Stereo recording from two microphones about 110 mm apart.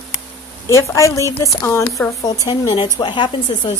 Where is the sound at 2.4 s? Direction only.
40° left (ahead or behind).